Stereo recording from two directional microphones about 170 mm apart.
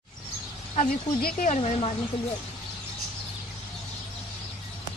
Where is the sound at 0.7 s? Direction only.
40° left (ahead or behind).